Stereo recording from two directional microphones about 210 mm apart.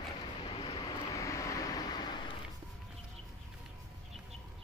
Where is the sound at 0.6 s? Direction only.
25° left (ahead or behind).